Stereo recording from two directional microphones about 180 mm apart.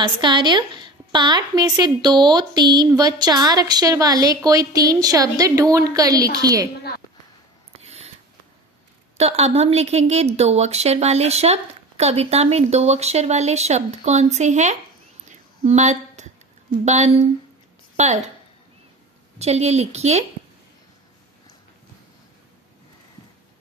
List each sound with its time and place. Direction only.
0.0 s a woman's voice: 25° right (ahead or behind)
7.7 s a sound: 35° right (ahead or behind)
9.1 s speech: 35° right (ahead or behind)
15.2 s a sound: 40° right (ahead or behind)
16.8 s a woman's voice: 40° right (ahead or behind)
19.3 s speech: 35° right (ahead or behind)